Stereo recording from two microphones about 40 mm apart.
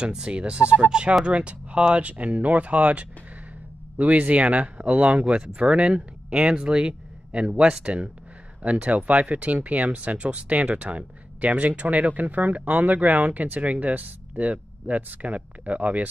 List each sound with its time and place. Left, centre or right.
0.3 s speech: right